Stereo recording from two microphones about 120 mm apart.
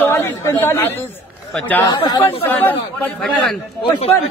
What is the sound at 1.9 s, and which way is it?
Speech, 45° left (ahead or behind).